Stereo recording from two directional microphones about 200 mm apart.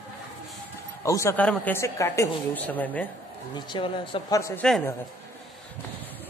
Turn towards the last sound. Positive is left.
turn(degrees=0)  # may be behind; listen again after turning